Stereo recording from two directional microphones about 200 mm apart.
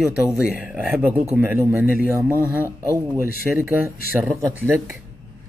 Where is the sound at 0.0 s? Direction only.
Centre (ahead or behind).